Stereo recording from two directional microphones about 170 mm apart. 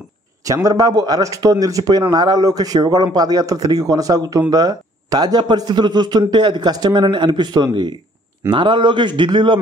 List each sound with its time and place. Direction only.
0.5 s a man's voice: 20° right (ahead or behind)